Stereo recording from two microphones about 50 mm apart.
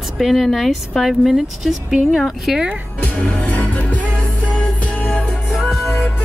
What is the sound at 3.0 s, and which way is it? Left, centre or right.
Music, left.